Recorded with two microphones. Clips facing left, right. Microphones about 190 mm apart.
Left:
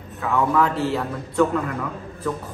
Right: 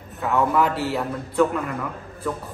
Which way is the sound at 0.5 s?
5° right (ahead or behind).